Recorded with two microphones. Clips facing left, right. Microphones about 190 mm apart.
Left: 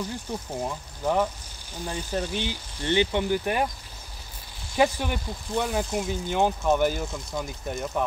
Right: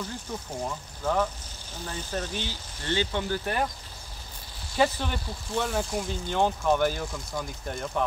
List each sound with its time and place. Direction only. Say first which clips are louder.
0.3 s speech: left 1 dB; 15° left (ahead or behind)
4.7 s speech: left 2 dB; 10° left (ahead or behind)